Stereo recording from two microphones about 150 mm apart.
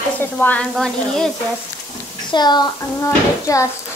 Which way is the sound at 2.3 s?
30° left (ahead or behind).